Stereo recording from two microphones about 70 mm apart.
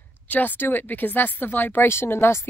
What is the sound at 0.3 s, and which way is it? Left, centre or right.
Speech, left.